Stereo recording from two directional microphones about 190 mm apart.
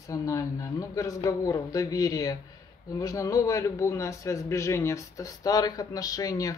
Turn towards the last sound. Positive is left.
turn(degrees=20)  # may be behind; listen again after turning